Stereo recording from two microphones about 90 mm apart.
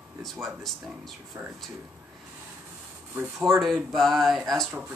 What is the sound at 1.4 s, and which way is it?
Speech, 25° right (ahead or behind).